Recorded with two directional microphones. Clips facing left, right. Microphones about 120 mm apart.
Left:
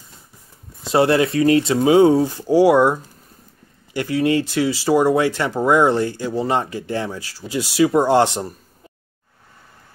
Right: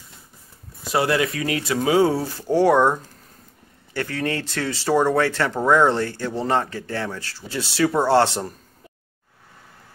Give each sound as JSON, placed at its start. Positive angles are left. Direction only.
{"t": 0.8, "sound": "speech", "side_deg": 30}